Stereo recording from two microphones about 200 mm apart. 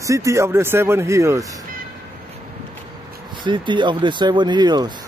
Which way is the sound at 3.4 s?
25° right (ahead or behind).